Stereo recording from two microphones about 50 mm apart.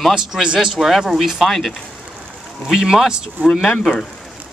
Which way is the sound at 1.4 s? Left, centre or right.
Centre.